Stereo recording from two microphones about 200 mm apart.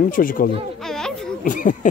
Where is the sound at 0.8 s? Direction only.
Centre (ahead or behind).